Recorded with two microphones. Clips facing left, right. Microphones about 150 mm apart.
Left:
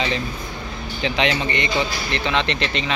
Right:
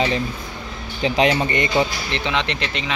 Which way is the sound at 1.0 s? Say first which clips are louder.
Right 4 dB; 40° right (ahead or behind).